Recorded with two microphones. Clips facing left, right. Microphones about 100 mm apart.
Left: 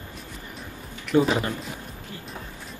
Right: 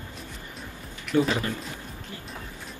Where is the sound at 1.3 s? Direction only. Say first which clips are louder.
Left 3 dB; 25° left (ahead or behind).